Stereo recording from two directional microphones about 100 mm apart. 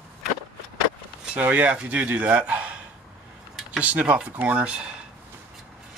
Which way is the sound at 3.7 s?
15° right (ahead or behind).